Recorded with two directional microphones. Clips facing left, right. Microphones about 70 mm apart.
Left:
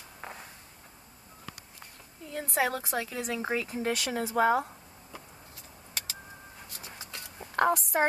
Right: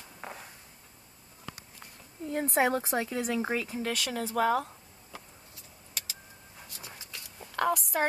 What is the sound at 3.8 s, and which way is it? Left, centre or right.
Speech, left.